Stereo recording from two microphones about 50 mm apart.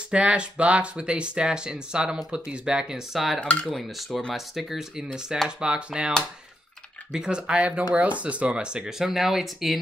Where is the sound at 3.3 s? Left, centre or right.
Left.